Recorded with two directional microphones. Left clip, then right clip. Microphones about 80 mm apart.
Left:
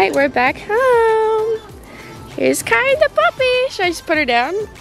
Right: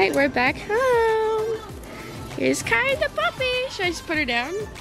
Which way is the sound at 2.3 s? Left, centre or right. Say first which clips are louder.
Left 6 dB; left.